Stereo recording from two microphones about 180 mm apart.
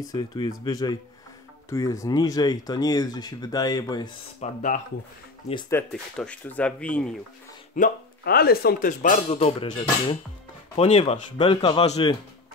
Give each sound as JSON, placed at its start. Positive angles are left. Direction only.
{"t": 0.0, "sound": "speech", "side_deg": 20}
{"t": 4.4, "sound": "speech", "side_deg": 45}
{"t": 5.7, "sound": "speech", "side_deg": 10}
{"t": 7.7, "sound": "speech", "side_deg": 50}
{"t": 9.4, "sound": "speech", "side_deg": 25}